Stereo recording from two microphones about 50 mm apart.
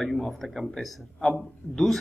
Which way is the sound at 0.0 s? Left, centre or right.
Centre.